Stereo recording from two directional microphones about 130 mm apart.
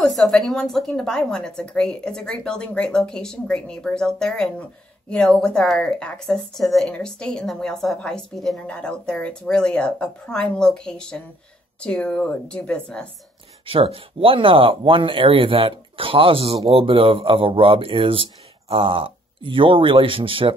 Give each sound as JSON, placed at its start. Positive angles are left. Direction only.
{"t": 0.0, "sound": "a woman's voice", "side_deg": 0}
{"t": 13.7, "sound": "speech", "side_deg": -45}